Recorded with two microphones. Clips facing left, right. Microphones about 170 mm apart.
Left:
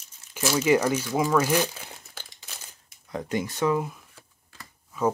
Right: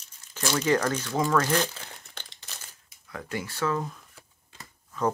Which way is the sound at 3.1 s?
20° left (ahead or behind).